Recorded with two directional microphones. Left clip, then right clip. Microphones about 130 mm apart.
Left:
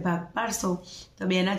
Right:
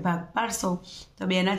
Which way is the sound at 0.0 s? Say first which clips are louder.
Right 1 dB; 35° right (ahead or behind).